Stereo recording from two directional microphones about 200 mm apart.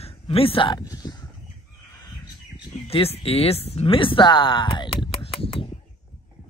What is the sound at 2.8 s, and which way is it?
Speech, 30° left (ahead or behind).